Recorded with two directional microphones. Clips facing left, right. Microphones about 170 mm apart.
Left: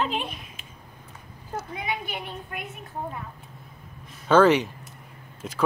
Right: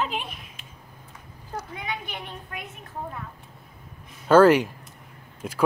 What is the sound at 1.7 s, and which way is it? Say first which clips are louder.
Speech: left 2 dB; 10° left (ahead or behind).